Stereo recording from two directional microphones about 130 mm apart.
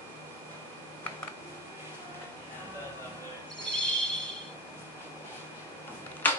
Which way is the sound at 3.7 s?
5° left (ahead or behind).